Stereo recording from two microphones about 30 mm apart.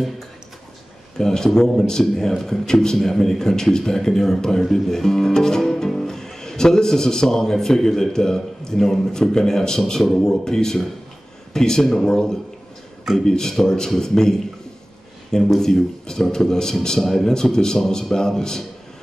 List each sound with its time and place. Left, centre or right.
1.1 s speech: centre
15.6 s speech: centre